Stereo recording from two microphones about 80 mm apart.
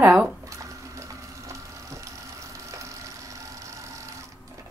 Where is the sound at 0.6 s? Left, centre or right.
Right.